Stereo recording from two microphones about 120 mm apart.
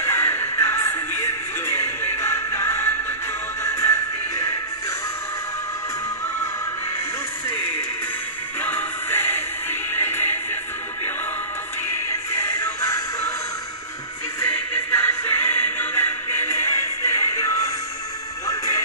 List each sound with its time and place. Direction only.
0.0 s music: 20° left (ahead or behind)
8.5 s music: 15° left (ahead or behind)
12.1 s music: 20° left (ahead or behind)
14.4 s music: 15° left (ahead or behind)